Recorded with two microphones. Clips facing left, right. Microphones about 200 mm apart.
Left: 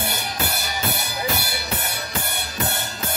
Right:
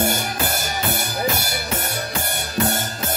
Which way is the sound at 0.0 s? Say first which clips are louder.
Right 5 dB; 45° right (ahead or behind).